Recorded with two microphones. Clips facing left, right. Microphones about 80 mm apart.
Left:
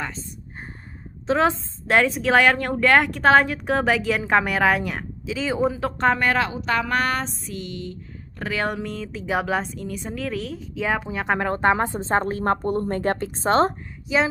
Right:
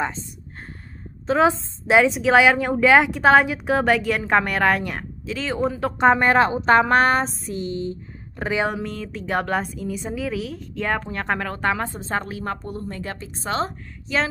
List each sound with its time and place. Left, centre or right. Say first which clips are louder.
1.2 s a woman's voice: right 2 dB; centre
6.1 s speech: right 5 dB; right
8.6 s a woman's voice: right 1 dB; centre
11.3 s speech: left 5 dB; left
12.4 s a woman's voice: left 7 dB; left
14.1 s a woman's voice: left 2 dB; centre